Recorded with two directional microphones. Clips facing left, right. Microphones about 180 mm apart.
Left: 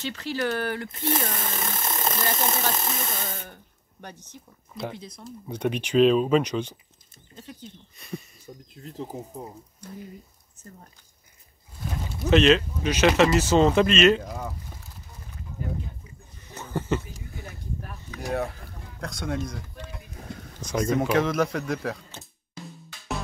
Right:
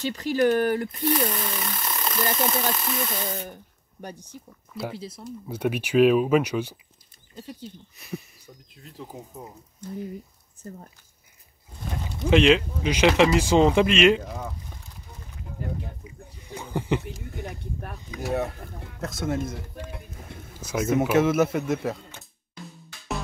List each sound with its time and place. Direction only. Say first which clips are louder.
0.4 s speech: right 7 dB; 15° right (ahead or behind)
0.9 s speech: right 3 dB; 45° left (ahead or behind)
4.0 s speech: right 4 dB; 10° right (ahead or behind)
8.5 s speech: left 5 dB; 35° left (ahead or behind)
8.9 s speech: left 4 dB; 25° left (ahead or behind)
10.6 s speech: right 7 dB; 40° right (ahead or behind)
12.3 s speech: even; 10° right (ahead or behind)
14.2 s boat: even; 5° left (ahead or behind)
16.0 s a sound: right 5 dB; 10° right (ahead or behind)
18.2 s speech: right 1 dB; centre (ahead or behind)
20.5 s speech: right 1 dB; 5° right (ahead or behind)